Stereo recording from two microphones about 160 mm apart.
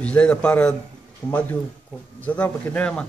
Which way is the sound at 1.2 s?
25° left (ahead or behind).